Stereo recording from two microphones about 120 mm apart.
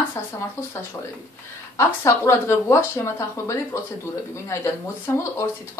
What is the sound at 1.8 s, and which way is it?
Speech, 20° left (ahead or behind).